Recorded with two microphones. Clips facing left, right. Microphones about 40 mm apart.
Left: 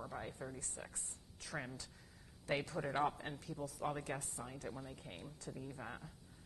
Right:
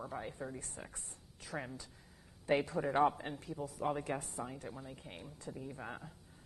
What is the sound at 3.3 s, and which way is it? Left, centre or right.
Speech, right.